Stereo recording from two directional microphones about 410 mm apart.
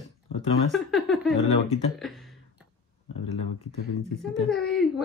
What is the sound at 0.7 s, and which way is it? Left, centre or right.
Speech, centre.